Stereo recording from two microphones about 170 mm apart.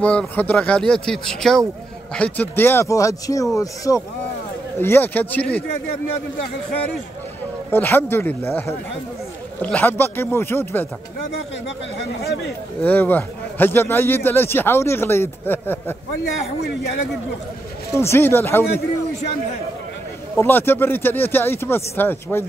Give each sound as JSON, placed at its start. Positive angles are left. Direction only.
{"t": 0.0, "sound": "a man's voice", "side_deg": 10}
{"t": 7.7, "sound": "a man's voice", "side_deg": 10}
{"t": 12.8, "sound": "a man's voice", "side_deg": 10}
{"t": 17.9, "sound": "a man's voice", "side_deg": 15}
{"t": 20.3, "sound": "a man's voice", "side_deg": 10}